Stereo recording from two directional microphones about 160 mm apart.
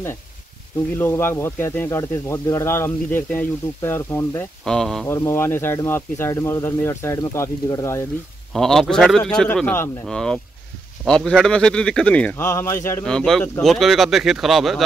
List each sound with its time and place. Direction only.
0.9 s speech: 15° left (ahead or behind)
4.6 s speech: 5° left (ahead or behind)
5.0 s speech: 15° left (ahead or behind)
8.5 s speech: centre (ahead or behind)
13.0 s speech: 5° left (ahead or behind)